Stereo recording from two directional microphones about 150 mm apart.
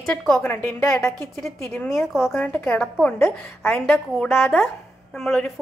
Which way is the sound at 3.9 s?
Centre (ahead or behind).